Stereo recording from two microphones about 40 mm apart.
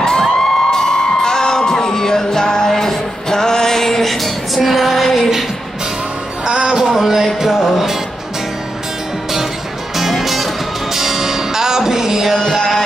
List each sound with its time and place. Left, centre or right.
0.0 s music: centre
6.4 s music: right
6.8 s a sound: centre
7.4 s music: centre
9.9 s music: centre
12.4 s music: centre